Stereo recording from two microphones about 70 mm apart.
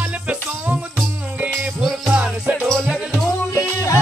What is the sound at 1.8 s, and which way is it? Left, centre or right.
Music, centre.